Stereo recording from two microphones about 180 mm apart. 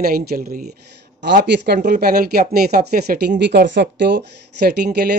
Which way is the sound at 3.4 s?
75° right (ahead or behind).